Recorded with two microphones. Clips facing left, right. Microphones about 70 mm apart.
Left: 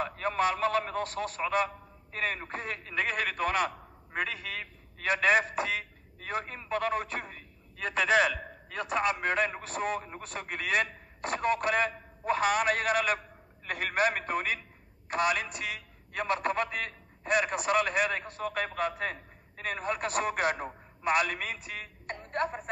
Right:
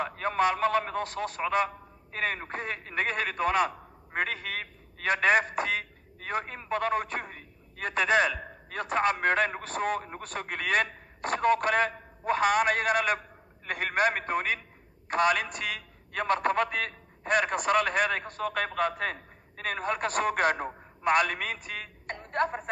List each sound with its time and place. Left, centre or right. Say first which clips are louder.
0.0 s a man's voice: right 2 dB; right
4.1 s a man's voice: right 3 dB; right
22.0 s a sound: right 3 dB; right